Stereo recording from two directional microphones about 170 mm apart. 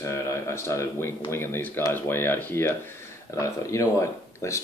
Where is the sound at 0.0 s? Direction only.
15° left (ahead or behind).